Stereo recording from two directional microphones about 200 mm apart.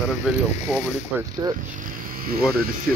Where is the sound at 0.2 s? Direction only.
Centre (ahead or behind).